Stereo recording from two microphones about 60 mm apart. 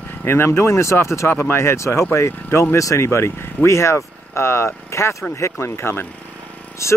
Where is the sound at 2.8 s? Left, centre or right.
Left.